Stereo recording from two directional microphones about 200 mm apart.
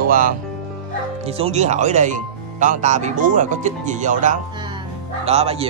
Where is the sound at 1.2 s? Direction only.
30° right (ahead or behind).